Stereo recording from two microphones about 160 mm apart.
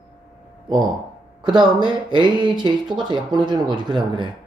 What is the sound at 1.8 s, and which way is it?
Speech, 30° right (ahead or behind).